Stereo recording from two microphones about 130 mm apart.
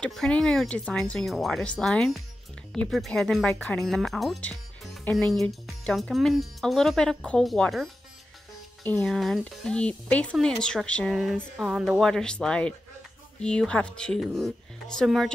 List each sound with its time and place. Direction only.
0.0 s speech: 5° left (ahead or behind)
9.0 s speech: centre (ahead or behind)